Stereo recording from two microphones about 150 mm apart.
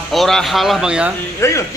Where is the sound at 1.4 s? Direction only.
20° left (ahead or behind).